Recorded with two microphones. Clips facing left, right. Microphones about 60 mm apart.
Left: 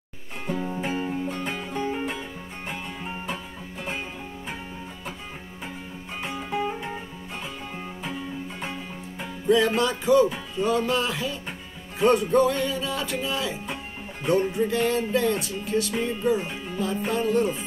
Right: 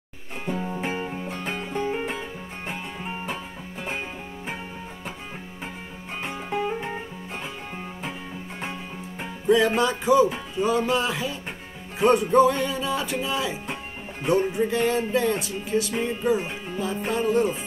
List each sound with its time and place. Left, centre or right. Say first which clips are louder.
0.5 s music: even; centre
0.8 s music: left 1 dB; right
1.2 s music: left 1 dB; centre
1.9 s music: right 1 dB; right
9.7 s music: right 1 dB; centre